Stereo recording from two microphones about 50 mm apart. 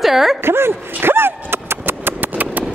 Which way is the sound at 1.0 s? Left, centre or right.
Right.